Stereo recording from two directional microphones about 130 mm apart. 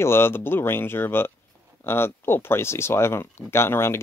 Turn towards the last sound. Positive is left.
turn(degrees=20)  # may be behind; listen again after turning